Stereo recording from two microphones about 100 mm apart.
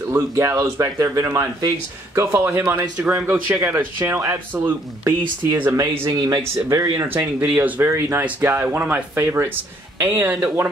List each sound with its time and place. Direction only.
0.1 s a man's voice: 30° right (ahead or behind)
7.5 s a man's voice: 25° right (ahead or behind)